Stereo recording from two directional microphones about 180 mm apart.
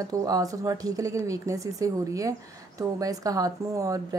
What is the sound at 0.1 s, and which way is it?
A woman's voice, 20° right (ahead or behind).